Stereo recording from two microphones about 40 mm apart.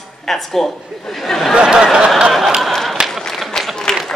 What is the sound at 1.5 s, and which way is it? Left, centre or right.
Speech, right.